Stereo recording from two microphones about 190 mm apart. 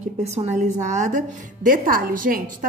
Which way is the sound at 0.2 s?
35° right (ahead or behind).